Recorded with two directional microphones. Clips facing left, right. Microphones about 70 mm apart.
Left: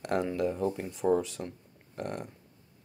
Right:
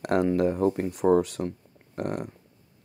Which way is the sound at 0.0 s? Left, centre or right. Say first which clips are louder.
Right 6 dB; right.